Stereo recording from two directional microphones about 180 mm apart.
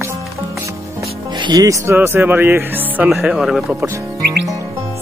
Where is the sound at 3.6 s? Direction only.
15° right (ahead or behind).